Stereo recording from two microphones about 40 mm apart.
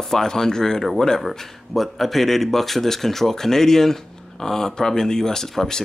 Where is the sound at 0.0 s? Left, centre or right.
Centre.